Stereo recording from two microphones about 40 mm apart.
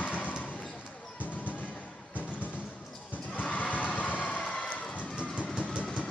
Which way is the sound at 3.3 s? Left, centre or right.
Left.